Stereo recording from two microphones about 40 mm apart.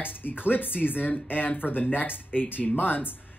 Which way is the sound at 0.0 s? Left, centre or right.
Left.